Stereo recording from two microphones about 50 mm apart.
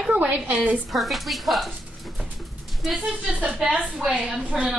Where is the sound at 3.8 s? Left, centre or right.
Centre.